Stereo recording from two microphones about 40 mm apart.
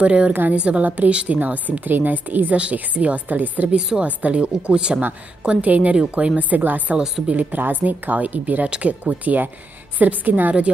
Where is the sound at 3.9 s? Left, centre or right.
Right.